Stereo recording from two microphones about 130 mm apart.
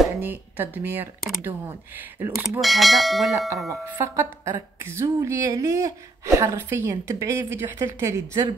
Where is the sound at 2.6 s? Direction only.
Centre (ahead or behind).